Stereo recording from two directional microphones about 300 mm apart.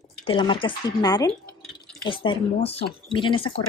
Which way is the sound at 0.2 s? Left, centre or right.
Centre.